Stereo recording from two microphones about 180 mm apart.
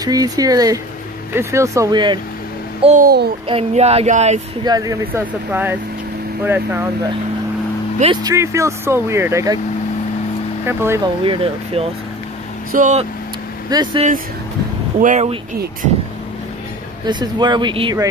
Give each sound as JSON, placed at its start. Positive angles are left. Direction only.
{"t": 0.0, "sound": "speech", "side_deg": -20}
{"t": 2.8, "sound": "speech", "side_deg": -40}
{"t": 4.6, "sound": "speech", "side_deg": -20}
{"t": 8.0, "sound": "speech", "side_deg": -25}
{"t": 10.6, "sound": "speech", "side_deg": -15}
{"t": 11.2, "sound": "speech", "side_deg": -30}
{"t": 12.7, "sound": "speech", "side_deg": -45}
{"t": 13.7, "sound": "speech", "side_deg": -25}
{"t": 15.0, "sound": "speech", "side_deg": -40}
{"t": 17.0, "sound": "speech", "side_deg": -25}